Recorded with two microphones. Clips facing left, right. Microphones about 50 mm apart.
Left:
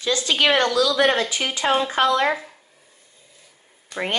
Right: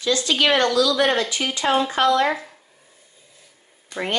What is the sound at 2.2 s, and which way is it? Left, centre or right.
Speech, centre.